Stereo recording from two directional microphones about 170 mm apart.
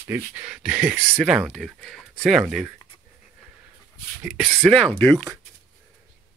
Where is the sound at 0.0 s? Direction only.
10° right (ahead or behind).